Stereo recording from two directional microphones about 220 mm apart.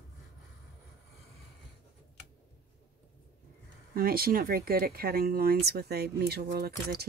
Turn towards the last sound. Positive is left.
turn(degrees=-45)  # may be behind; listen again after turning